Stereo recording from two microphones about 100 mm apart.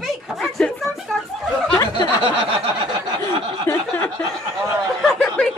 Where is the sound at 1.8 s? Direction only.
45° left (ahead or behind).